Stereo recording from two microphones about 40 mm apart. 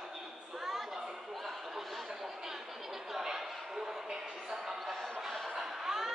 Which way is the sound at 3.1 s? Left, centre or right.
Centre.